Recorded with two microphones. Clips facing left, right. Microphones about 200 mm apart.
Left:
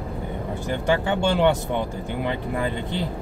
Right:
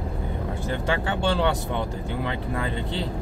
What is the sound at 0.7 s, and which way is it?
Speech, 15° left (ahead or behind).